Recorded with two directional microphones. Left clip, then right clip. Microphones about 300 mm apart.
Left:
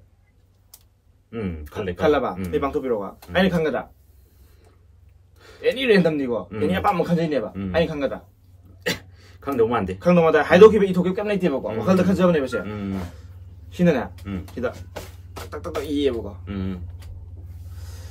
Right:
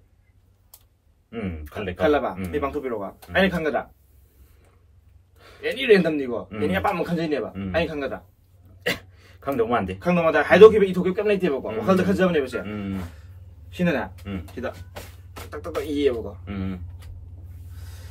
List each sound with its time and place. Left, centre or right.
1.3 s a man's voice: centre
2.5 s speech: centre
5.6 s a man's voice: centre
15.9 s a man's voice: centre